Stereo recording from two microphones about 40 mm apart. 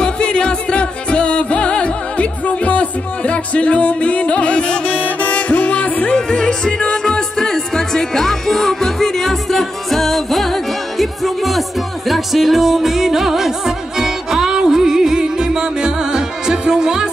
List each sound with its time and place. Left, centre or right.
0.0 s music: left
6.1 s music: centre